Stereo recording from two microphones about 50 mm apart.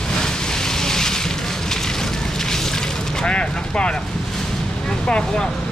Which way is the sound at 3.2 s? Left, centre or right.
Centre.